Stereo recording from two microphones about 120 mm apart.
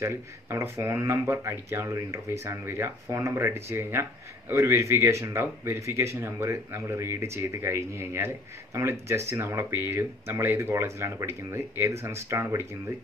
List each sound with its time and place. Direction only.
0.0 s speech: 20° right (ahead or behind)